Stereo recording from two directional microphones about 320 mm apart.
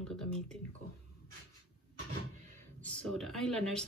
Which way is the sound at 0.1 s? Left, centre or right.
Centre.